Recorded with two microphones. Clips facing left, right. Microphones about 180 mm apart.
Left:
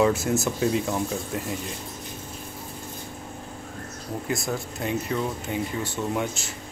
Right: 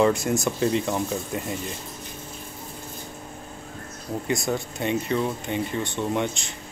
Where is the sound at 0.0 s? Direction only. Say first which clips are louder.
Right 1 dB; 5° left (ahead or behind).